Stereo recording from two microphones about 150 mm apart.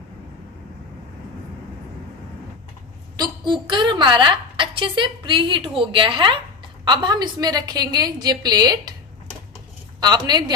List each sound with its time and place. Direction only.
3.2 s a woman's voice: 30° right (ahead or behind)
9.9 s a woman's voice: 25° right (ahead or behind)